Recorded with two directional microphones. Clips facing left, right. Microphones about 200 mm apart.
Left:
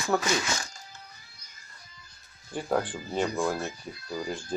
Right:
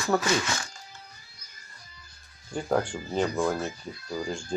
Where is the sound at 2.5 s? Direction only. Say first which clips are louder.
Right 2 dB; centre (ahead or behind).